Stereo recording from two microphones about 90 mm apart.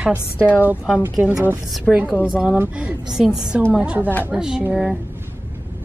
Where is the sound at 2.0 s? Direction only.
15° right (ahead or behind).